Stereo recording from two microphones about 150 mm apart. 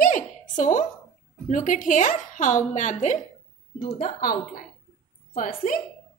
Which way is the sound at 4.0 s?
70° left (ahead or behind).